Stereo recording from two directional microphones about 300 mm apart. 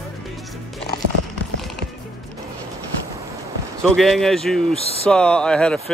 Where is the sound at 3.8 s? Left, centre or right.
Centre.